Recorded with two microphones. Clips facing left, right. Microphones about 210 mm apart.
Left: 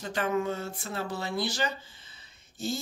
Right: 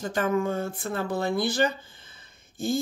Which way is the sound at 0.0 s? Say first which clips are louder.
Right 4 dB; 45° right (ahead or behind).